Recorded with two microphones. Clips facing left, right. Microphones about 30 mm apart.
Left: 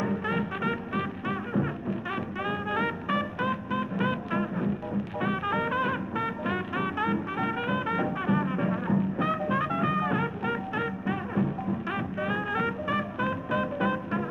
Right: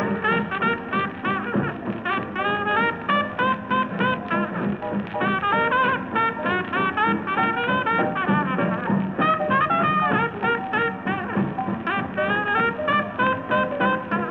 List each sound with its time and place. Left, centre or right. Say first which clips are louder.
0.0 s music: right 6 dB; right